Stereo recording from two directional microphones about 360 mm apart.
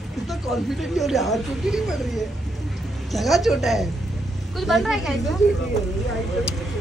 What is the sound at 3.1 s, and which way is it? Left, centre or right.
Speech, centre.